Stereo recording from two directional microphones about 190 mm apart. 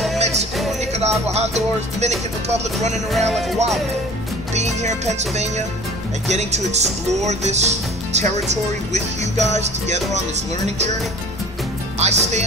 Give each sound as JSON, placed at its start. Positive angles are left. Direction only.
{"t": 0.2, "sound": "music", "side_deg": -35}
{"t": 1.3, "sound": "speech", "side_deg": -35}
{"t": 3.1, "sound": "music", "side_deg": 0}
{"t": 4.6, "sound": "speech", "side_deg": -35}
{"t": 12.0, "sound": "speech", "side_deg": -35}